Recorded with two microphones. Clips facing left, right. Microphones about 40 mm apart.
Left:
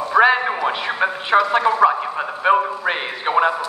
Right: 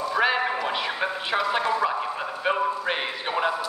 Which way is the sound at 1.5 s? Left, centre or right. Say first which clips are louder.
Left 8 dB; left.